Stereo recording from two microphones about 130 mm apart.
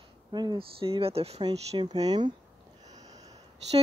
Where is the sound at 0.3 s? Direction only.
35° right (ahead or behind).